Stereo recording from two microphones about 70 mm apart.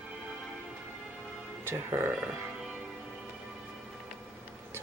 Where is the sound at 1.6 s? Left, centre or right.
Right.